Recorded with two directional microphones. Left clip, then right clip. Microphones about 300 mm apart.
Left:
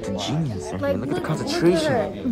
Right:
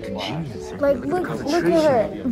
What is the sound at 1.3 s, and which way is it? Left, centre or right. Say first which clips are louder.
Speech: left 2 dB; centre.